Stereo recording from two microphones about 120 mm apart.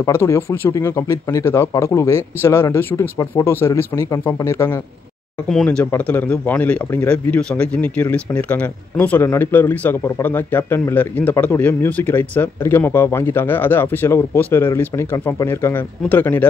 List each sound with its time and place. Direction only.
0.0 s speech: 20° left (ahead or behind)
5.5 s a man's voice: 5° left (ahead or behind)